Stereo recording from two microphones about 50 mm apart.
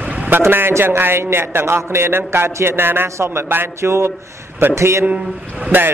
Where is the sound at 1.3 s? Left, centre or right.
Right.